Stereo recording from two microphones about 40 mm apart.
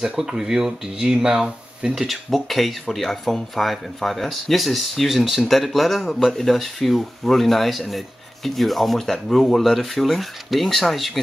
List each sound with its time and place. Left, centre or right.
0.3 s speech: centre
2.0 s speech: centre